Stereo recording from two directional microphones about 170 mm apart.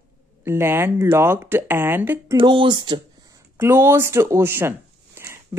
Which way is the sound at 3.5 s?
15° right (ahead or behind).